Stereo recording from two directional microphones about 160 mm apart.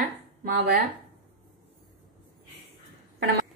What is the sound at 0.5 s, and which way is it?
Speech, 75° right (ahead or behind).